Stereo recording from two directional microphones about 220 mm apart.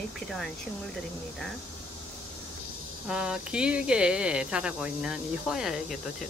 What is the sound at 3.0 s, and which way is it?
Speech, 5° right (ahead or behind).